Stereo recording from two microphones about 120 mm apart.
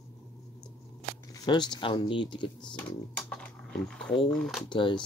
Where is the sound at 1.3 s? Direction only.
40° left (ahead or behind).